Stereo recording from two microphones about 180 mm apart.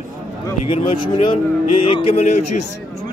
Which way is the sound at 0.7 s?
30° left (ahead or behind).